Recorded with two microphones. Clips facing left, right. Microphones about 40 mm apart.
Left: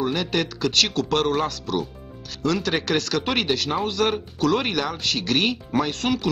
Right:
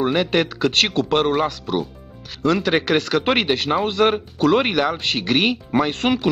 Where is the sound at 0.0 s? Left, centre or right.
Right.